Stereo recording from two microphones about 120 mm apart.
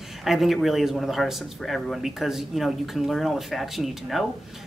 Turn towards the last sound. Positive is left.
turn(degrees=0)  # may be behind; listen again after turning